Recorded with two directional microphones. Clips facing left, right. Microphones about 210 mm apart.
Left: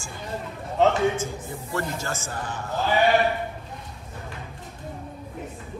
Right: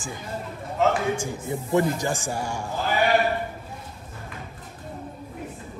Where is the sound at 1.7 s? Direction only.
15° right (ahead or behind).